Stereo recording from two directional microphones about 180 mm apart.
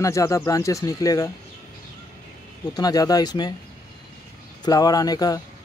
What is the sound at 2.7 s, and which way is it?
Speech, 20° left (ahead or behind).